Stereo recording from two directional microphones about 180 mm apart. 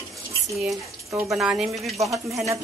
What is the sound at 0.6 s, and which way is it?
A woman's voice, 5° right (ahead or behind).